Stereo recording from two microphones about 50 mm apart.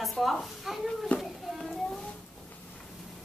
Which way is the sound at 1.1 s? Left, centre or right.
Left.